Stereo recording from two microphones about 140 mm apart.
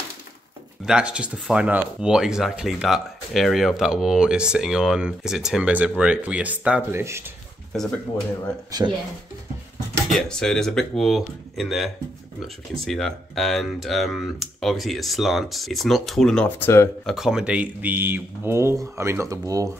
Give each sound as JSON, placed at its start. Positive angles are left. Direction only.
{"t": 0.8, "sound": "speech", "side_deg": -5}
{"t": 7.7, "sound": "speech", "side_deg": 0}
{"t": 10.1, "sound": "speech", "side_deg": 5}
{"t": 16.4, "sound": "speech", "side_deg": 15}
{"t": 17.0, "sound": "speech", "side_deg": 0}